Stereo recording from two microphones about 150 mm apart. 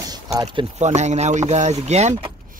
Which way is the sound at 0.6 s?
50° right (ahead or behind).